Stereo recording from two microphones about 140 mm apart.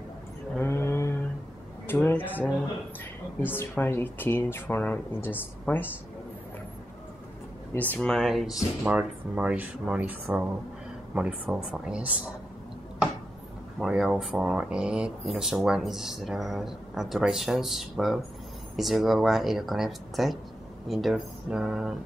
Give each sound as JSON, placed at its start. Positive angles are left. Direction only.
{"t": 0.6, "sound": "a sound", "side_deg": 15}
{"t": 1.9, "sound": "speech", "side_deg": 15}
{"t": 7.7, "sound": "speech", "side_deg": 10}
{"t": 13.7, "sound": "speech", "side_deg": -5}